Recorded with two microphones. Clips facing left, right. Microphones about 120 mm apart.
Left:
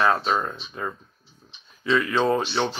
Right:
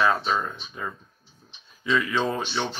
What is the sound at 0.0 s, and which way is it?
Speech, 30° left (ahead or behind).